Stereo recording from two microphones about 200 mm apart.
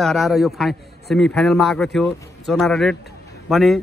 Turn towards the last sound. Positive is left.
turn(degrees=0)  # may be behind; listen again after turning